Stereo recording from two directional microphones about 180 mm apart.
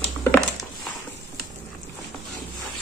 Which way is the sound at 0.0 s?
5° left (ahead or behind).